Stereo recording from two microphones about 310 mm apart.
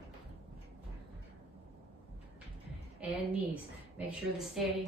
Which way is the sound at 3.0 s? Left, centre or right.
Centre.